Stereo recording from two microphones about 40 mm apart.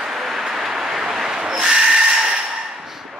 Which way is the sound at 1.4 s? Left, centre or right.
Right.